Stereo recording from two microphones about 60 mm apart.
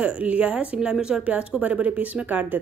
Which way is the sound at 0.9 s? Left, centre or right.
Centre.